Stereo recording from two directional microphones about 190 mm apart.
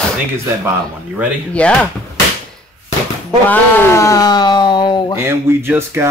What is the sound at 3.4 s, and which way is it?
Speech, 15° left (ahead or behind).